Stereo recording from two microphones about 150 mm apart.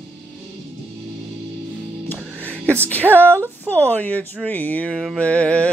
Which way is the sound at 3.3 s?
15° right (ahead or behind).